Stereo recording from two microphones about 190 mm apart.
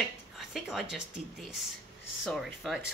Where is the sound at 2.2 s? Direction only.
Centre (ahead or behind).